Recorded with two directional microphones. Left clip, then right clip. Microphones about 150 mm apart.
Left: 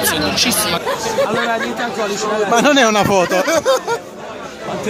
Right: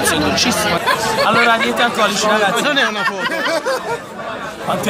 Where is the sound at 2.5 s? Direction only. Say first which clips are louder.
Left 4 dB; 60° left (ahead or behind); by 3.3 s 80° left.